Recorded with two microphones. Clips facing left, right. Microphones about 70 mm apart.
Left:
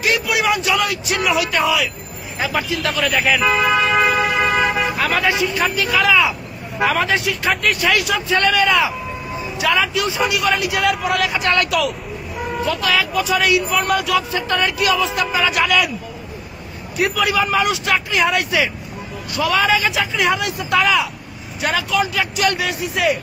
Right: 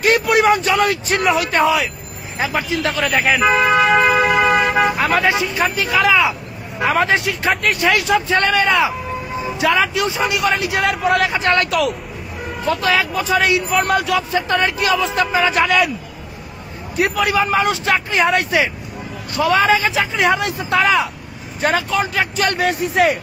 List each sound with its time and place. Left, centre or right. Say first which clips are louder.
0.0 s a man's voice: right 5 dB; right; by 3.9 s centre
4.9 s speech: right 2 dB; right
17.2 s a man's voice: right 1 dB; right